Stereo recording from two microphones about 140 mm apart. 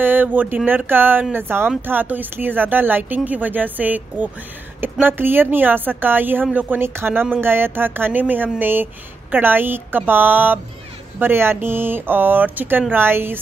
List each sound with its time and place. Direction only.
0.0 s speech: 15° right (ahead or behind)